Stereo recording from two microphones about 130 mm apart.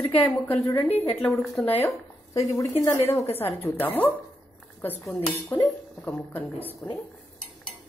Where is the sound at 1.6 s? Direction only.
15° left (ahead or behind).